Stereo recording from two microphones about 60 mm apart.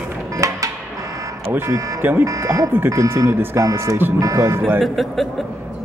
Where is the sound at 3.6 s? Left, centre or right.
Right.